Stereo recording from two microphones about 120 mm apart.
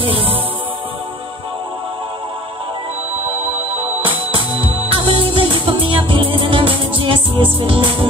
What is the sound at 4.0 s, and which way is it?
Music, 50° right (ahead or behind).